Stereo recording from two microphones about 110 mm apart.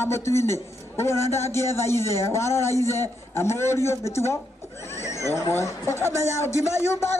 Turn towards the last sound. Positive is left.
turn(degrees=25)  # may be behind; listen again after turning